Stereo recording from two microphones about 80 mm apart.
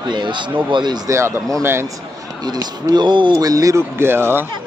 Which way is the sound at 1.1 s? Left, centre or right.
Right.